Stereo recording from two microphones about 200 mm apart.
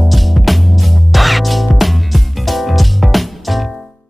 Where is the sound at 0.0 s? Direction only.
Centre (ahead or behind).